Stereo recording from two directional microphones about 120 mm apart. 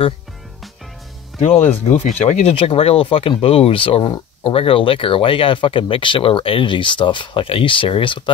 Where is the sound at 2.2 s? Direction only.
60° left (ahead or behind).